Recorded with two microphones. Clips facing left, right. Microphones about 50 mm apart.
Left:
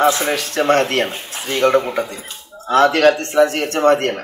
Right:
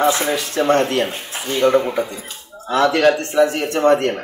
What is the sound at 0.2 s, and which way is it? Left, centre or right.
Speech, left.